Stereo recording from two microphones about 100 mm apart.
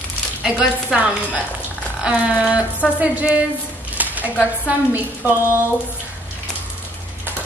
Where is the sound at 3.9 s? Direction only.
15° right (ahead or behind).